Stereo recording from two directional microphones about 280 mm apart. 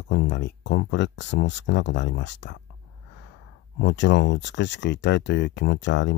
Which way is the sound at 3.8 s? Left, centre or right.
Left.